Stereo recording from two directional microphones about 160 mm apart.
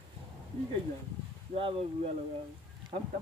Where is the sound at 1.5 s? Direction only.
35° right (ahead or behind).